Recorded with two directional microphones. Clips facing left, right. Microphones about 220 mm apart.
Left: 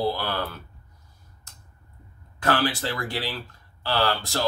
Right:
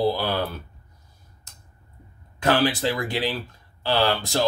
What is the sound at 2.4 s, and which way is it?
Speech, 15° right (ahead or behind).